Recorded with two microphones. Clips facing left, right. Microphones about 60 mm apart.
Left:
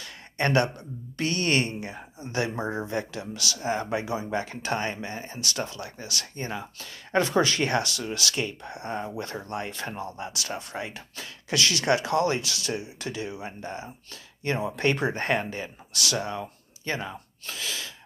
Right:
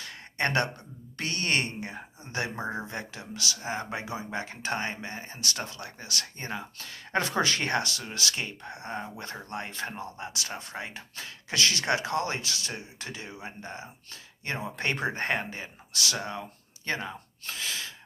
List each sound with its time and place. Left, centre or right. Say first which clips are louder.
0.0 s a sound: left 2 dB; right
1.1 s speech: left 4 dB; right
2.5 s speech: left 3 dB; centre
2.9 s speech: left 7 dB; right
14.8 s speech: left 2 dB; right
16.8 s speech: left 1 dB; right
17.6 s gasp: left 1 dB; right